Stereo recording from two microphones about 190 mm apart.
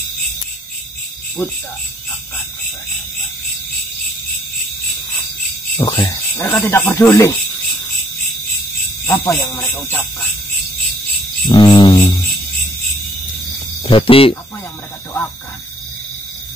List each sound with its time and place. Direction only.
1.4 s speech: 10° left (ahead or behind)
5.8 s speech: 25° left (ahead or behind)
6.3 s speech: 10° left (ahead or behind)
9.0 s speech: 15° left (ahead or behind)
11.4 s a sound: 25° left (ahead or behind)
13.8 s speech: 30° left (ahead or behind)